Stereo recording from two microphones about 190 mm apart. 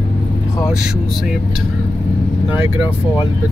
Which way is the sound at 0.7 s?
5° right (ahead or behind).